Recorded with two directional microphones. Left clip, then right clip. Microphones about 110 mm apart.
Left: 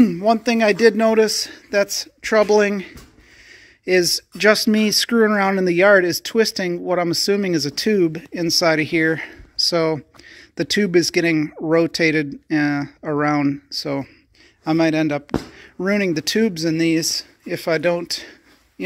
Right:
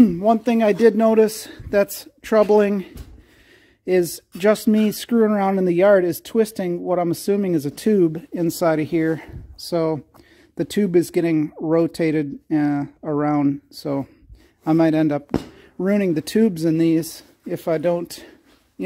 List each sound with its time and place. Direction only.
0.0 s a man's voice: 30° right (ahead or behind)
3.8 s speech: 30° right (ahead or behind)
14.6 s a man's voice: 40° right (ahead or behind); by 18.0 s 25° right (ahead or behind)
18.0 s speech: 45° right (ahead or behind)